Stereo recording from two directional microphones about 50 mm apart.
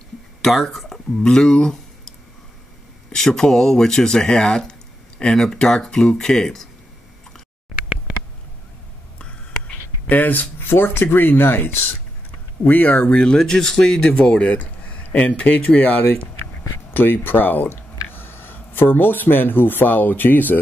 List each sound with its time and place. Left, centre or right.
0.4 s speech: centre
3.1 s speech: centre
10.0 s speech: left
12.6 s speech: left
13.1 s speech: centre
16.9 s speech: left